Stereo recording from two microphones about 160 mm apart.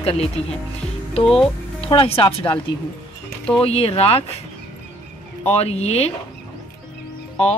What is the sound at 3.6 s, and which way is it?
Speech, 40° left (ahead or behind).